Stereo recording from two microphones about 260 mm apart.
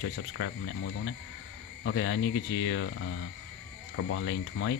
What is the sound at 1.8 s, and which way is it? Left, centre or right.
Speech, left.